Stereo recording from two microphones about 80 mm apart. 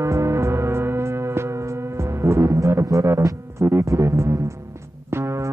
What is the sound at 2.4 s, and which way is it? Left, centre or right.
Music, right.